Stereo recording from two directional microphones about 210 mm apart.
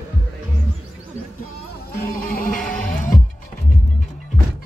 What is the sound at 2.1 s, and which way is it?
Music, 40° left (ahead or behind).